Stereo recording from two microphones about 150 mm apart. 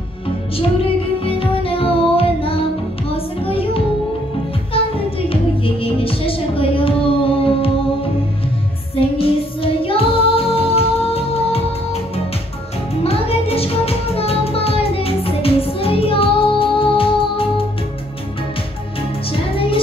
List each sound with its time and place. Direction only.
1.2 s music: 40° left (ahead or behind)
8.9 s music: 40° left (ahead or behind)
13.0 s music: 40° left (ahead or behind)
19.5 s music: 40° left (ahead or behind)